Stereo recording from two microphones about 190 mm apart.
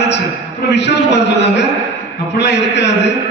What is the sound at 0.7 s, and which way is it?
A man's voice, 65° left (ahead or behind).